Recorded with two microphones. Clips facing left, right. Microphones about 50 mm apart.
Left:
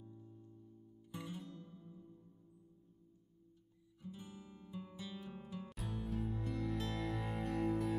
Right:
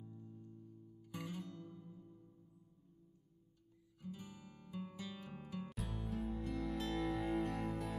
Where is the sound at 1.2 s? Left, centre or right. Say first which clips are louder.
Right 2 dB; right.